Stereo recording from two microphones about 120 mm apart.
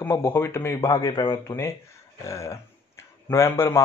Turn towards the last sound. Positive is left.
turn(degrees=25)  # may be behind; listen again after turning